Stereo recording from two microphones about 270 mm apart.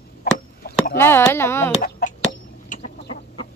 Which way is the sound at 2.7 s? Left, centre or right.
Left.